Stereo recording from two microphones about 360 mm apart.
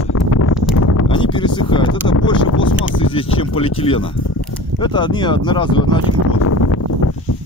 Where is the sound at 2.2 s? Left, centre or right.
Left.